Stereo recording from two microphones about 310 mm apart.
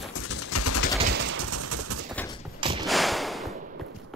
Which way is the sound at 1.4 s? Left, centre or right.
Right.